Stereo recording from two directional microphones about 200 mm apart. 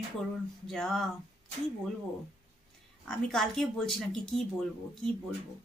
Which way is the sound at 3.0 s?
Centre (ahead or behind).